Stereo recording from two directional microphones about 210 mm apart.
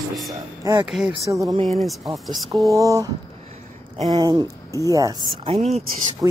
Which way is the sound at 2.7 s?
15° right (ahead or behind).